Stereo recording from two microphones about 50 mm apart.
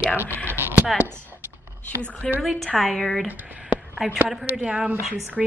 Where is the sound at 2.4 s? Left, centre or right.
Centre.